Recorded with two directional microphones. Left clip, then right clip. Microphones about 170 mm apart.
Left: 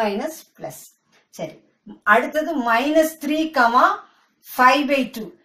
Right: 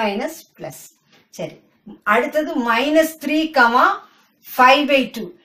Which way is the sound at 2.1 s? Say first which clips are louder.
Even; 10° right (ahead or behind).